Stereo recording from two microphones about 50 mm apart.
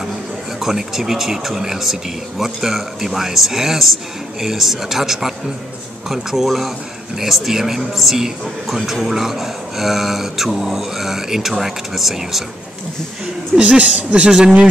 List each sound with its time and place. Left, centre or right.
0.6 s a man's voice: centre
13.6 s a woman's voice: right